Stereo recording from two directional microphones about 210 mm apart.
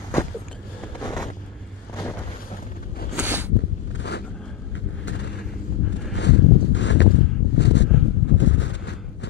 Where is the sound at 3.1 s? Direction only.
10° right (ahead or behind).